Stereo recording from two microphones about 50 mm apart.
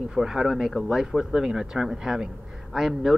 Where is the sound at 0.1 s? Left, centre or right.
Centre.